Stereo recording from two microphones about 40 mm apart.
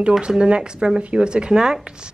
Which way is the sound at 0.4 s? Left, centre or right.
Centre.